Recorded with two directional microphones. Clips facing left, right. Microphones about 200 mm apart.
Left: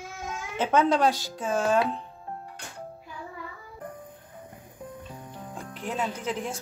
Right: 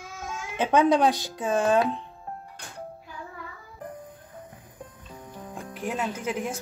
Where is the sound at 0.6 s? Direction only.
15° right (ahead or behind).